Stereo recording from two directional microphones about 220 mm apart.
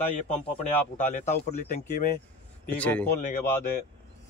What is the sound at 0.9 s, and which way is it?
Speech, 35° left (ahead or behind).